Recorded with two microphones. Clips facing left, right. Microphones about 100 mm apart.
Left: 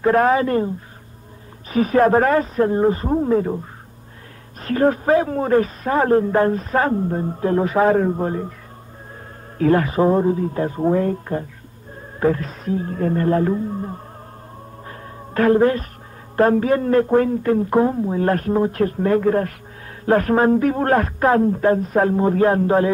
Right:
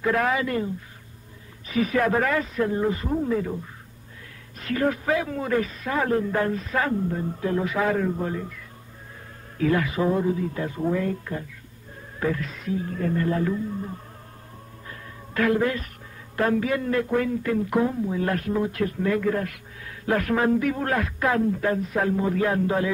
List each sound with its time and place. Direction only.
0.0 s a man's voice: 40° left (ahead or behind)
1.7 s a man's voice: 40° left (ahead or behind)
4.6 s a man's voice: 40° left (ahead or behind)
9.6 s a man's voice: 40° left (ahead or behind)
14.9 s music: 40° left (ahead or behind)
16.3 s a man's voice: 40° left (ahead or behind)